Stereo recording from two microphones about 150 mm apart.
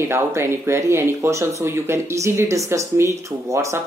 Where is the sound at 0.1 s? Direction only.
15° right (ahead or behind).